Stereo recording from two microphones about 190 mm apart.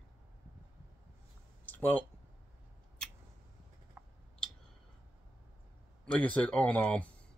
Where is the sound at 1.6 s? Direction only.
10° left (ahead or behind).